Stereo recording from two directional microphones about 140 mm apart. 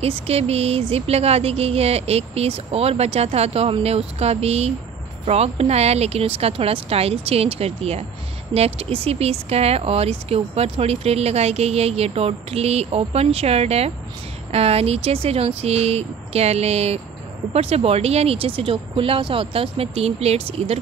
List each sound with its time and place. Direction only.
0.0 s speech: 45° right (ahead or behind)